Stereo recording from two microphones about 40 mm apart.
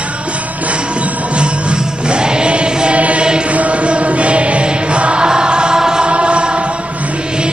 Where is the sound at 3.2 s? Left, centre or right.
Right.